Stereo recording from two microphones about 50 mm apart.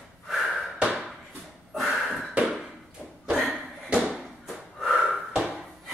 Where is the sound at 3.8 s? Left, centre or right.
Centre.